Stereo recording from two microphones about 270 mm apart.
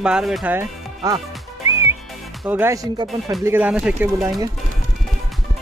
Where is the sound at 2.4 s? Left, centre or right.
Centre.